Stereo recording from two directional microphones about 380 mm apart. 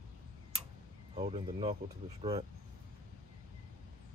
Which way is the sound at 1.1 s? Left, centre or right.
Centre.